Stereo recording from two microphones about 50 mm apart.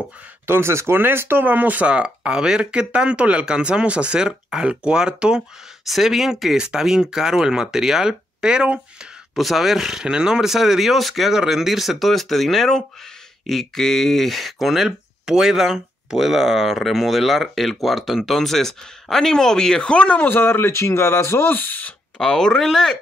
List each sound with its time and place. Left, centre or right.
0.5 s speech: right
1.4 s speech: right
1.9 s speech: centre
5.9 s speech: centre; by 8.8 s right
9.3 s speech: centre
10.0 s speech: centre; by 20.3 s left
20.3 s speech: left
22.2 s speech: centre